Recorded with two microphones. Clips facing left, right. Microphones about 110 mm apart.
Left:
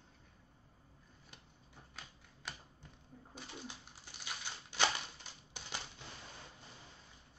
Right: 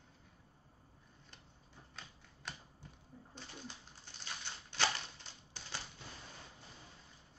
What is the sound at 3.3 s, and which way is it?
Bird, 10° left (ahead or behind).